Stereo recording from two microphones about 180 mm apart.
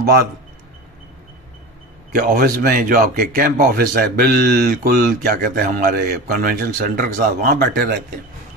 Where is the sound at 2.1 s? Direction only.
55° right (ahead or behind).